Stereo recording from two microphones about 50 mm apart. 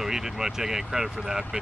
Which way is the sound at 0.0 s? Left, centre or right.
Centre.